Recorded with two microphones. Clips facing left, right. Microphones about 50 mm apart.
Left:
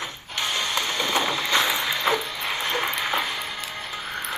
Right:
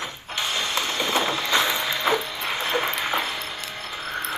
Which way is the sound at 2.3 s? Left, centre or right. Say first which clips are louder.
Right 1 dB; centre.